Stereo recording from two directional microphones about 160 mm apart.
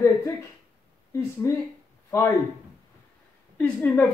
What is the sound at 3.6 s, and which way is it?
Speech, 10° left (ahead or behind).